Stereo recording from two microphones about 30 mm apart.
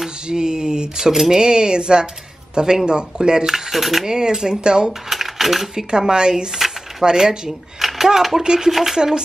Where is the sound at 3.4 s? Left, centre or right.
Centre.